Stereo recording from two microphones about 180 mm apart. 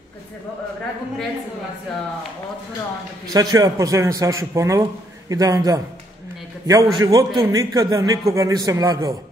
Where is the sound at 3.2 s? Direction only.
20° right (ahead or behind).